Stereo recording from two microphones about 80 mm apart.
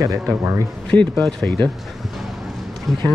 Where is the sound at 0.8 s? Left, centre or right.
Centre.